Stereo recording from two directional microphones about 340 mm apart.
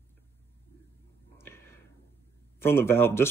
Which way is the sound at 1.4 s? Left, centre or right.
Centre.